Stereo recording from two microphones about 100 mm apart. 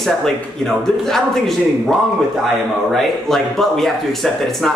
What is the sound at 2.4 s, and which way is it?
Speech, 5° left (ahead or behind).